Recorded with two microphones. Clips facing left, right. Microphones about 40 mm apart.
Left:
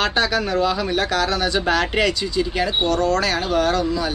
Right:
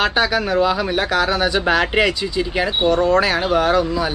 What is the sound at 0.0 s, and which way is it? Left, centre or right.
Speech, centre.